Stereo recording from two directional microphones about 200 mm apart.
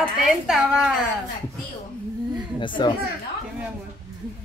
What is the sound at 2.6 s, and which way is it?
Speech, 25° left (ahead or behind).